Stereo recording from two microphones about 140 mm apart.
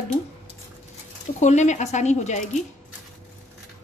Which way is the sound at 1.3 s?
55° left (ahead or behind).